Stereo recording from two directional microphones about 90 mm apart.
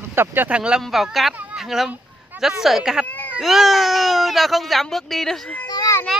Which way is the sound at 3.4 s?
Centre (ahead or behind).